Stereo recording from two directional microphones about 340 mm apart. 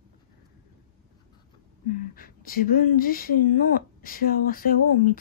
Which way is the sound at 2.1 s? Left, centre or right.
Left.